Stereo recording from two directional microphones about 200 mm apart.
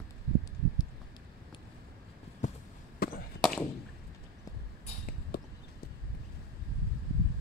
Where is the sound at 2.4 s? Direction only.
40° left (ahead or behind).